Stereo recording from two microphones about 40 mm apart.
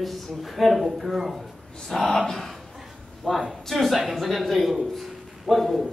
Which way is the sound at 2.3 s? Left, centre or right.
Centre.